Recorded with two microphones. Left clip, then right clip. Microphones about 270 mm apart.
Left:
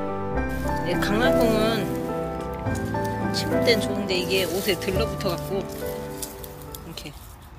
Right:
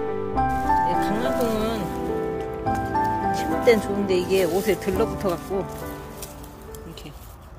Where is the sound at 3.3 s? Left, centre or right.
Centre.